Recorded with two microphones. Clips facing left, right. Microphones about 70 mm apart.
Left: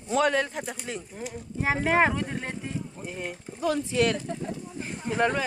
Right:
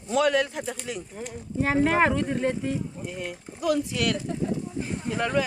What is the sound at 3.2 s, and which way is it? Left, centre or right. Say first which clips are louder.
Speech: right 1 dB; left.